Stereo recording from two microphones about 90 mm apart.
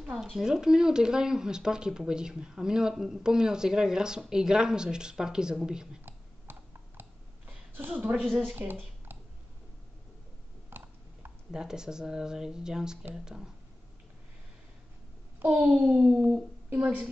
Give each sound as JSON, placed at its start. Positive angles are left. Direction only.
{"t": 0.1, "sound": "speech", "side_deg": -5}
{"t": 6.0, "sound": "clicking", "side_deg": -25}
{"t": 7.9, "sound": "speech", "side_deg": -15}
{"t": 8.2, "sound": "speech", "side_deg": 5}
{"t": 8.5, "sound": "a sound", "side_deg": -20}
{"t": 10.7, "sound": "a sound", "side_deg": -25}
{"t": 11.5, "sound": "speech", "side_deg": -5}
{"t": 15.4, "sound": "speech", "side_deg": -15}